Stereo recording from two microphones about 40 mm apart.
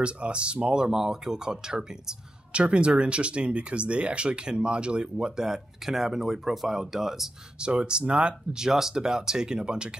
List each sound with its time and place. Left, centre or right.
0.0 s speech: right
2.6 s speech: right; by 7.2 s centre
7.6 s speech: right
8.5 s speech: centre